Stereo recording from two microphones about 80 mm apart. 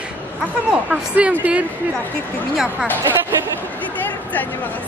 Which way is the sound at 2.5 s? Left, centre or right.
Centre.